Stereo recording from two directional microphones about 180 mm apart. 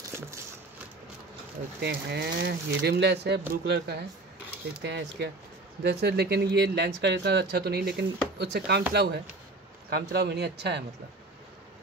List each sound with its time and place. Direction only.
1.8 s speech: 65° right (ahead or behind)